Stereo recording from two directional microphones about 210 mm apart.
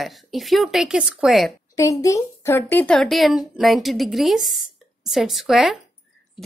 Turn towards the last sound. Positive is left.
turn(degrees=0)  # may be behind; listen again after turning